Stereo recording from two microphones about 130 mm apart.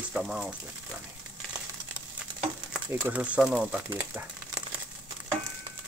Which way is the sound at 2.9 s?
15° right (ahead or behind).